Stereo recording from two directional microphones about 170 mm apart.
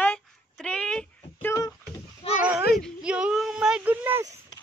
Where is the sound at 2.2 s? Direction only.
35° left (ahead or behind).